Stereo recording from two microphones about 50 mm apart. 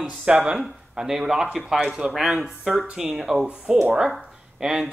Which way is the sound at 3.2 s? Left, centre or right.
Centre.